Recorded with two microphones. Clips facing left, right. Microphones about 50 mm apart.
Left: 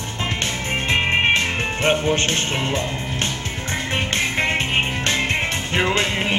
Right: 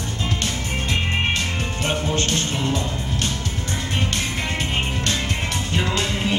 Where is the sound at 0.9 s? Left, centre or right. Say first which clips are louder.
Left 6 dB; left.